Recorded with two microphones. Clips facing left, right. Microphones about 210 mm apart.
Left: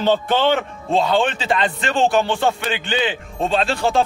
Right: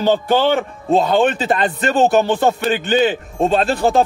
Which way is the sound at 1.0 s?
45° right (ahead or behind).